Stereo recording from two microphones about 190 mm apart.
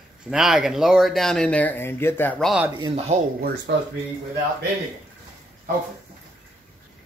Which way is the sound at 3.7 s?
70° right (ahead or behind).